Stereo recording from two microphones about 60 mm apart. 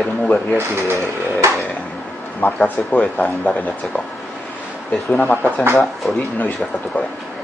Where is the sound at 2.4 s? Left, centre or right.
Left.